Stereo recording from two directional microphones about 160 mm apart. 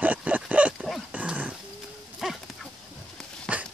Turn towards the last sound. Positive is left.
turn(degrees=0)  # may be behind; listen again after turning